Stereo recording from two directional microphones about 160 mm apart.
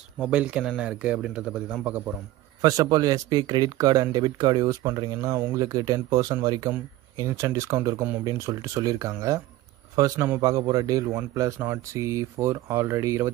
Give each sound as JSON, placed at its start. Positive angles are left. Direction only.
{"t": 0.2, "sound": "speech", "side_deg": -5}
{"t": 2.6, "sound": "speech", "side_deg": -25}